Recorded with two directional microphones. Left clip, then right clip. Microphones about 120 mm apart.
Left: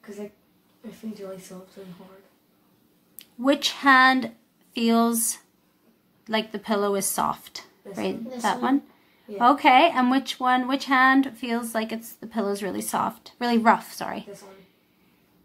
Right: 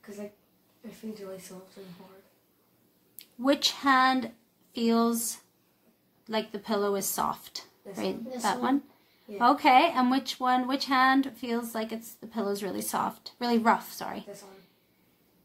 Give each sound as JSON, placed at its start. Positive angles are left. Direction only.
{"t": 3.2, "sound": "speech", "side_deg": 15}